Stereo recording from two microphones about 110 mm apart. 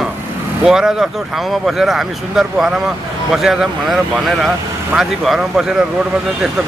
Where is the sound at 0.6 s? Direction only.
5° right (ahead or behind).